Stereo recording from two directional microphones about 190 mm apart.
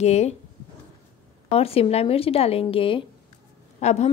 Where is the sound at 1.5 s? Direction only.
30° left (ahead or behind).